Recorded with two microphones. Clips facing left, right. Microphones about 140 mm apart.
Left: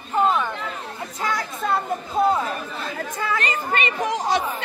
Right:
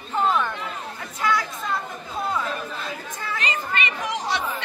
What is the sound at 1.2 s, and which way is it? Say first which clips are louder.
Chatter: right 1 dB; 50° left (ahead or behind).